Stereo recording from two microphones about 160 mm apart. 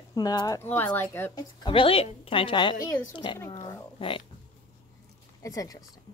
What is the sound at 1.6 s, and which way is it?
A woman's voice, 35° left (ahead or behind).